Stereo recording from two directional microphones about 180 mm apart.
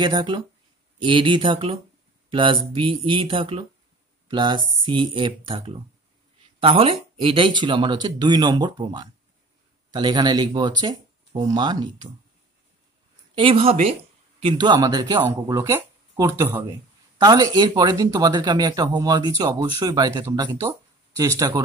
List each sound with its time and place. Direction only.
0.0 s speech: 25° right (ahead or behind)
13.3 s speech: 30° right (ahead or behind)